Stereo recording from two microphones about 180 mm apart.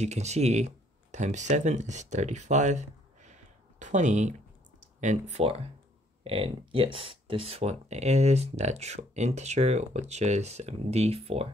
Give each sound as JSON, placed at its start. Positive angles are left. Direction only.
{"t": 0.0, "sound": "speech", "side_deg": -40}